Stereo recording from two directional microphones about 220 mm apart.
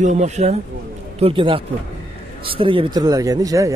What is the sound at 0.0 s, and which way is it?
A man's voice, 30° right (ahead or behind).